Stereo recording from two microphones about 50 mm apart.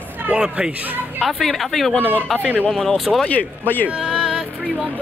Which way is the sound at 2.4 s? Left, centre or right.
Right.